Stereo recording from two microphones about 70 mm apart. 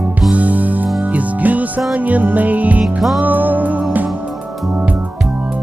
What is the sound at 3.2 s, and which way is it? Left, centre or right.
Music, right.